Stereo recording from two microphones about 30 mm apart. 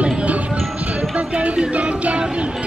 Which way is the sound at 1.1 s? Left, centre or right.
Right.